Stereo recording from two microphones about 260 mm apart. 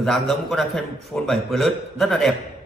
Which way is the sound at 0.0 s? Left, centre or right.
Centre.